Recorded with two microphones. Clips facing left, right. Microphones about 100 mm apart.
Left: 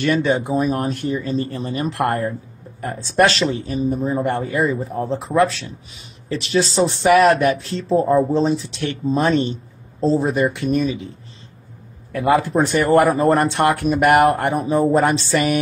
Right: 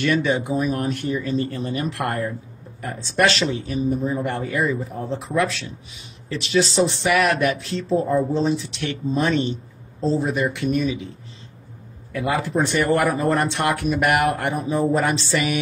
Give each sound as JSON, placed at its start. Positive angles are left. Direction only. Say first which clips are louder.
{"t": 0.0, "sound": "speech", "louder": "left 2 dB", "side_deg": 35}
{"t": 12.1, "sound": "speech", "louder": "left 6 dB", "side_deg": 50}